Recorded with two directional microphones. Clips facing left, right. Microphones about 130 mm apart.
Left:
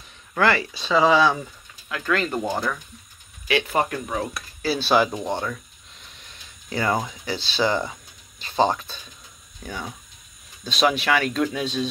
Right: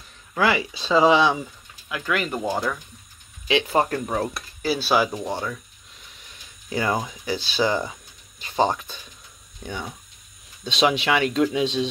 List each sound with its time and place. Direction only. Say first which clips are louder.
0.3 s speech: left 1 dB; 10° right (ahead or behind)
0.7 s speech: right 2 dB; 20° right (ahead or behind)
3.4 s speech: right 1 dB; 20° right (ahead or behind)
4.1 s stir: right 2 dB; 35° right (ahead or behind)
4.6 s speech: left 1 dB; 10° right (ahead or behind)
5.1 s speech: left 1 dB; 15° left (ahead or behind)
6.7 s speech: even; 15° right (ahead or behind)
10.6 s speech: even; 20° right (ahead or behind)